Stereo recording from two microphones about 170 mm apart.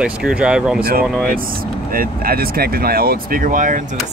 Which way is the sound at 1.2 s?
55° right (ahead or behind).